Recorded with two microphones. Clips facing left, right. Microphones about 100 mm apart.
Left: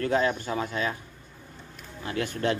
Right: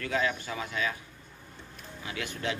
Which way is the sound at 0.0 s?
35° left (ahead or behind).